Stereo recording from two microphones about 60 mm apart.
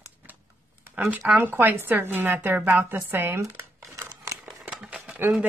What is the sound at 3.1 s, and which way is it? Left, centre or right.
Crumpling, right.